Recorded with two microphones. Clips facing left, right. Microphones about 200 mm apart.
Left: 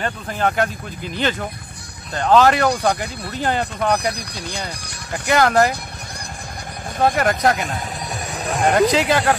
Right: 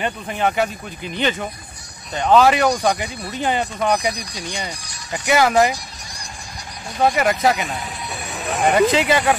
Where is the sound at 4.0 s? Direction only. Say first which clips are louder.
Even; 60° left (ahead or behind).